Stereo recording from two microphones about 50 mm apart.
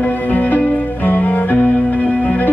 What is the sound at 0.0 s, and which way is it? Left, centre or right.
Music, left.